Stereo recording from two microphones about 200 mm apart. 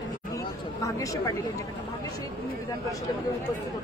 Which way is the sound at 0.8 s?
15° left (ahead or behind).